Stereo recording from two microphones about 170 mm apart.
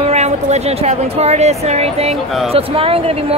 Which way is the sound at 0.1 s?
40° right (ahead or behind).